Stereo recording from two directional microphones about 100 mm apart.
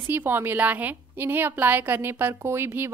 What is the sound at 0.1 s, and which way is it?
A woman's voice, 20° right (ahead or behind).